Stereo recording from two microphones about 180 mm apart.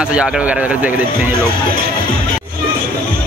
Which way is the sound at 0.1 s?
5° right (ahead or behind).